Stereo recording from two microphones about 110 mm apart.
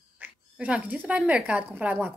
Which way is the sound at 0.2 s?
10° right (ahead or behind).